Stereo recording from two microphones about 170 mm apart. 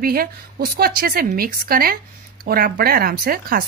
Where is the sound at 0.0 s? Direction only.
60° right (ahead or behind).